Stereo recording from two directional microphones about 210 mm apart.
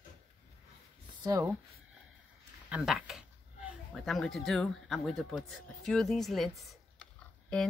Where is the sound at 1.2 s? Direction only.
15° right (ahead or behind).